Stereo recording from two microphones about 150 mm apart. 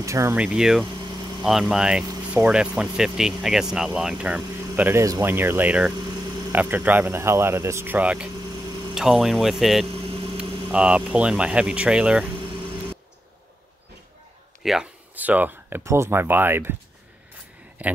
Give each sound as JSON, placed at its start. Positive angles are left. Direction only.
{"t": 0.0, "sound": "speech", "side_deg": -20}
{"t": 0.4, "sound": "speech", "side_deg": -5}
{"t": 14.6, "sound": "speech", "side_deg": -5}
{"t": 17.8, "sound": "a man's voice", "side_deg": -10}